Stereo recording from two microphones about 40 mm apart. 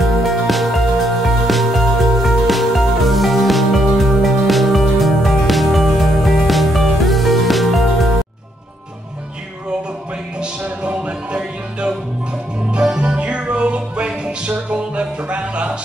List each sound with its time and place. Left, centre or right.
0.0 s music: centre
10.6 s music: right